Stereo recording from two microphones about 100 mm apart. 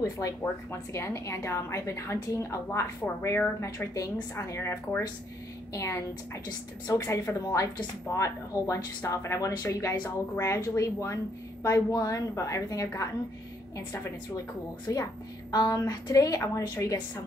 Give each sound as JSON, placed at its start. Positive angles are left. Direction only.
{"t": 0.0, "sound": "a woman's voice", "side_deg": 35}